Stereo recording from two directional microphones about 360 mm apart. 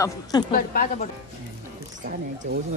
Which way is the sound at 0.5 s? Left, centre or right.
Left.